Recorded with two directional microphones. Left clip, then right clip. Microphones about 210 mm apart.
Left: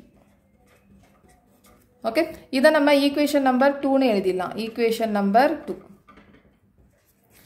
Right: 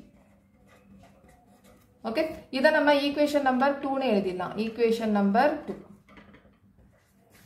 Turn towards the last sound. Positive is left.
turn(degrees=50)  # may be behind; listen again after turning